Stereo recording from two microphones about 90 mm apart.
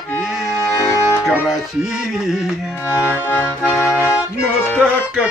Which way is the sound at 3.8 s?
30° left (ahead or behind).